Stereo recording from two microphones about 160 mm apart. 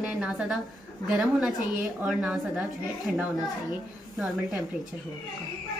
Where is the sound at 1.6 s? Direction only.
55° right (ahead or behind).